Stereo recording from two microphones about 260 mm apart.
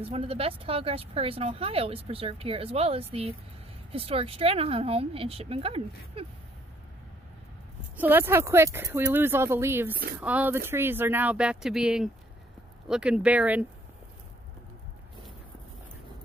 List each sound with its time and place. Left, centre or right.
0.0 s speech: right
8.0 s speech: centre